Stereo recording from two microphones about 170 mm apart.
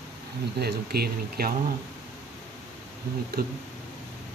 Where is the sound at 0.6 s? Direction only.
70° right (ahead or behind).